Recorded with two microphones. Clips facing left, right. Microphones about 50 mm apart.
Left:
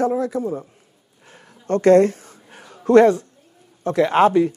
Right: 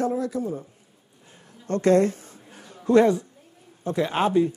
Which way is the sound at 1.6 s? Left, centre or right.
Left.